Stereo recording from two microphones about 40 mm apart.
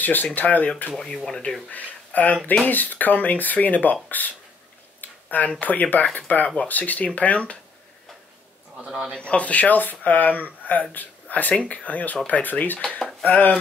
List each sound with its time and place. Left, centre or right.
0.0 s speech: left
0.9 s speech: centre
1.7 s speech: left
5.0 s a sound: left
5.6 s speech: left
8.7 s a man's voice: centre
9.2 s speech: left